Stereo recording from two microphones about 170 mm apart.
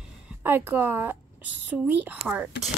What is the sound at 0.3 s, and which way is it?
A woman's voice, 10° right (ahead or behind).